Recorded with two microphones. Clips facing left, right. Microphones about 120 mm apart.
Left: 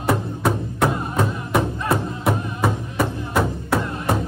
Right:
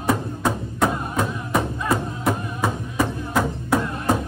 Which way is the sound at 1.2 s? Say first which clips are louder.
Left 2 dB; centre (ahead or behind).